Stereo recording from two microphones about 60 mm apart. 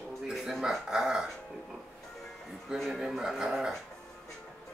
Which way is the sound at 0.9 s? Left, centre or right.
Centre.